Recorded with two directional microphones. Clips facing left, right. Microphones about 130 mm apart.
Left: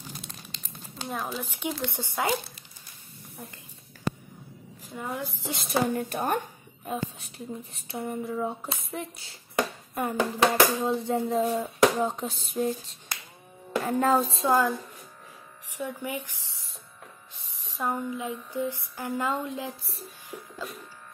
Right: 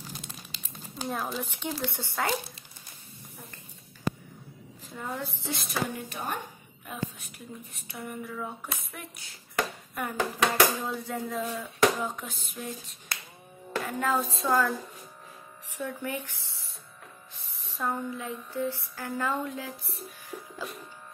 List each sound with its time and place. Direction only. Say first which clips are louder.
0.1 s crumpling: even; 5° right (ahead or behind)
1.9 s speech: left 2 dB; 15° left (ahead or behind)
4.9 s speech: left 2 dB; 10° left (ahead or behind)
5.6 s speech: left 7 dB; 25° left (ahead or behind)
5.9 s a woman's voice: left 7 dB; 50° left (ahead or behind)
6.8 s speech: left 4 dB; 30° left (ahead or behind)
13.8 s speech: left 6 dB; 35° left (ahead or behind); by 16.4 s 15° left (ahead or behind)
17.4 s a sound: left 1 dB; 15° left (ahead or behind)
20.5 s music: left 1 dB; centre (ahead or behind)